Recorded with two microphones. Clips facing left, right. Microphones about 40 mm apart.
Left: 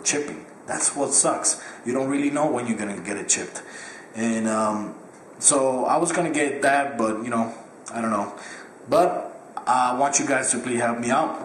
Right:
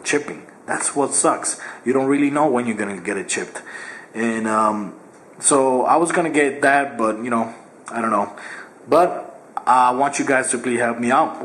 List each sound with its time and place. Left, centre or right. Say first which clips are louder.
0.0 s speech: right 5 dB; centre